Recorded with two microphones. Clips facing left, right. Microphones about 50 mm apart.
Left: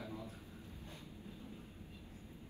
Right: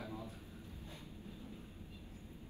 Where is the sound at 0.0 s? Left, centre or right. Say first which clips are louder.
Right 1 dB; right.